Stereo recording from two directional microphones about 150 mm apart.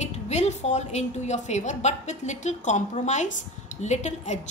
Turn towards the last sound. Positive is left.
turn(degrees=50)  # may be behind; listen again after turning